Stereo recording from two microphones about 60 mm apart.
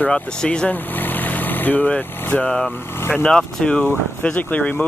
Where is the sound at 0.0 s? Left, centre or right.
Centre.